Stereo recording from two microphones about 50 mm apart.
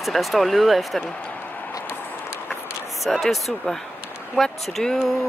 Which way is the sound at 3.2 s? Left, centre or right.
Centre.